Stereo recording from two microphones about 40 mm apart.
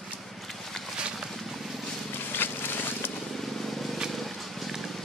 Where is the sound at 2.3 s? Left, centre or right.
Left.